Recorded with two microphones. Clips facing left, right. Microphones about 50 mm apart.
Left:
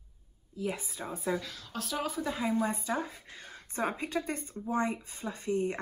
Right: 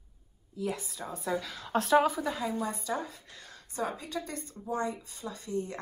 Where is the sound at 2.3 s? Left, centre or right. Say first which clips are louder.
Left 2 dB; left.